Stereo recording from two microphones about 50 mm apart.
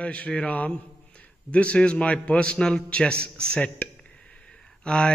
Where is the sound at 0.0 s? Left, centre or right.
Left.